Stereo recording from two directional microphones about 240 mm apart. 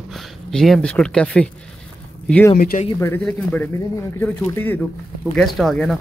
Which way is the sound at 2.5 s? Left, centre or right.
Left.